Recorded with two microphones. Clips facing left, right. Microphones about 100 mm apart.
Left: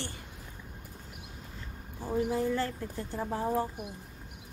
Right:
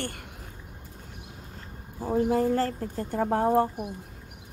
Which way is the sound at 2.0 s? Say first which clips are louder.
Right 6 dB; 25° right (ahead or behind).